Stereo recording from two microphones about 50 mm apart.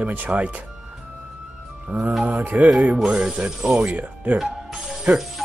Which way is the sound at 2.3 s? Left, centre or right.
Right.